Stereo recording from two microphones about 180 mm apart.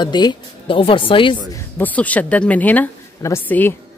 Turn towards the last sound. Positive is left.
turn(degrees=10)  # may be behind; listen again after turning